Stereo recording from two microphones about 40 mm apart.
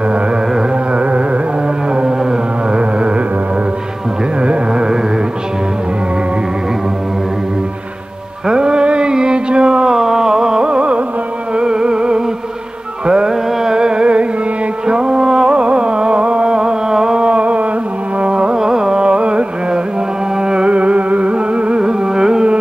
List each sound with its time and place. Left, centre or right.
0.1 s carnatic music: right
2.7 s music: right
4.4 s carnatic music: right
8.5 s a sound: right
9.9 s carnatic music: centre
11.5 s music: right
18.2 s carnatic music: right
20.4 s music: right